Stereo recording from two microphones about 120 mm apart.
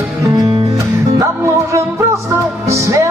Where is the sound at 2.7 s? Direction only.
25° right (ahead or behind).